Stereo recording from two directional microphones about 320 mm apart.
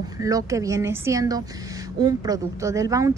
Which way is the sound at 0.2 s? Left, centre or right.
Centre.